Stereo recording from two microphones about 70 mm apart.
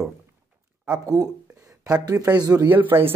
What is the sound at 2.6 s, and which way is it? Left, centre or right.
Speech, right.